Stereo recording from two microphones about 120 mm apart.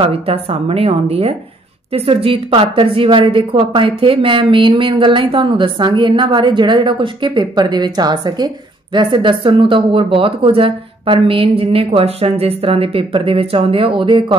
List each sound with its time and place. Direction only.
0.0 s a woman's voice: 50° right (ahead or behind)